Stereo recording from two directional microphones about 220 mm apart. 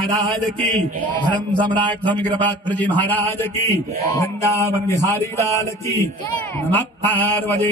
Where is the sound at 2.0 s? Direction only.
5° left (ahead or behind).